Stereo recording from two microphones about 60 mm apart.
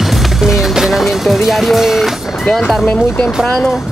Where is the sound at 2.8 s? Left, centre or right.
Centre.